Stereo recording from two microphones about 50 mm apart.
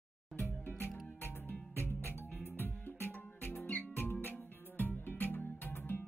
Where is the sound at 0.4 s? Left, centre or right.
Left.